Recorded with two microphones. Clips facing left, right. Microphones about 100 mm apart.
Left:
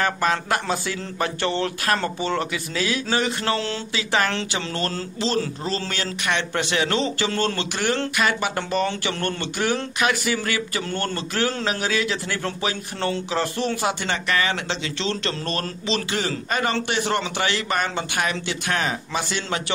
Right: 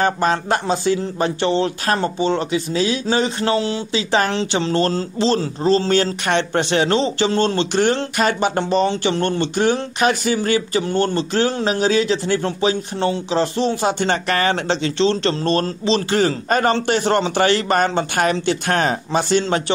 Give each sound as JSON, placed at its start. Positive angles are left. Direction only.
{"t": 0.0, "sound": "speech", "side_deg": -30}
{"t": 16.1, "sound": "a man's voice", "side_deg": -40}